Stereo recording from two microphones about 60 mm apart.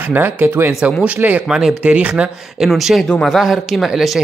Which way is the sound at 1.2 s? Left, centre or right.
Right.